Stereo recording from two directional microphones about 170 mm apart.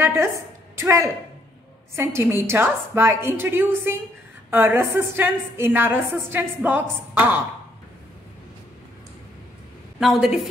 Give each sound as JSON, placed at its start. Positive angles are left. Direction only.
{"t": 0.0, "sound": "a woman's voice", "side_deg": -15}
{"t": 9.9, "sound": "a woman's voice", "side_deg": 0}